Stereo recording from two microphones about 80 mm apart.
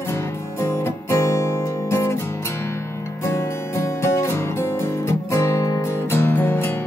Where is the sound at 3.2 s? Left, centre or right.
Left.